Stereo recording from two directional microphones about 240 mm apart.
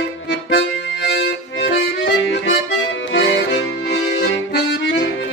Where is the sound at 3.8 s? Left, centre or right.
Left.